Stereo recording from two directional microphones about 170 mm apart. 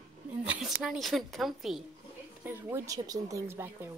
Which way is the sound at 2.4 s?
15° right (ahead or behind).